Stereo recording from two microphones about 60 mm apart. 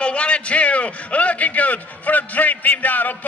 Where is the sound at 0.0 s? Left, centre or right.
Centre.